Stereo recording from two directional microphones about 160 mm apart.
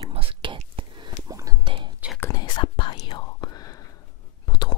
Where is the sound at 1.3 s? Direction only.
20° right (ahead or behind).